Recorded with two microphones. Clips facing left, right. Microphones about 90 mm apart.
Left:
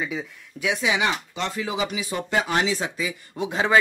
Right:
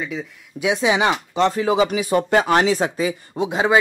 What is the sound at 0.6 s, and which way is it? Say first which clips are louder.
Speech: right 5 dB; 25° right (ahead or behind).